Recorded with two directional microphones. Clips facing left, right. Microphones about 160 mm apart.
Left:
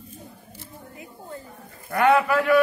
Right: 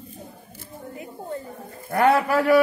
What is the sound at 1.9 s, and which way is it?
Speech, 30° right (ahead or behind).